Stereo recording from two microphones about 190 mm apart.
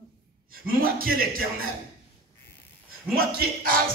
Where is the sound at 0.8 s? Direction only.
50° right (ahead or behind).